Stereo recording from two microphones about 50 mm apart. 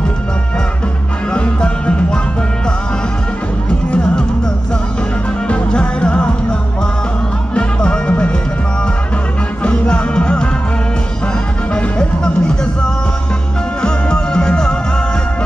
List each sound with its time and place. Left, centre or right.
1.3 s music: left
5.5 s music: centre
7.5 s music: centre
9.6 s music: left
11.7 s music: centre
13.8 s music: centre